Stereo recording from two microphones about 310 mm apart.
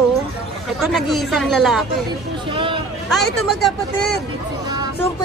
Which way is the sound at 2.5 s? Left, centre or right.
Centre.